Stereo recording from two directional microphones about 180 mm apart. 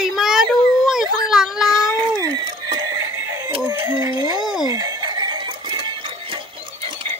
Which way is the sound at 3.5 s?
20° right (ahead or behind).